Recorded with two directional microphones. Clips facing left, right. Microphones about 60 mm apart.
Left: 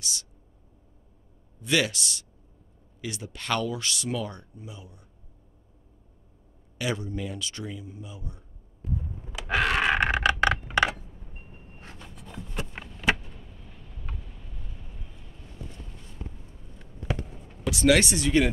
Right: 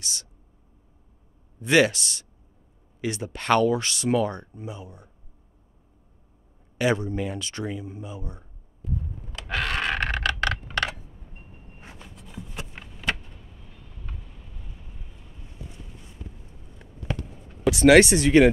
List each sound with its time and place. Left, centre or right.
0.0 s speech: right
1.6 s speech: right
6.8 s speech: right
9.3 s a sound: centre
11.8 s a sound: centre
17.6 s speech: right